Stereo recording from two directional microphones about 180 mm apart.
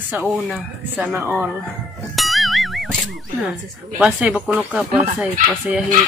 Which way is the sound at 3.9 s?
5° right (ahead or behind).